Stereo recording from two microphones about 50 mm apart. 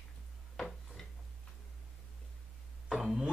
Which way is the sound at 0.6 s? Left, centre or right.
Centre.